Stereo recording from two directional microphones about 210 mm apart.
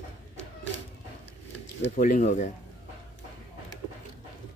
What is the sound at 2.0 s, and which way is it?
Speech, 40° left (ahead or behind).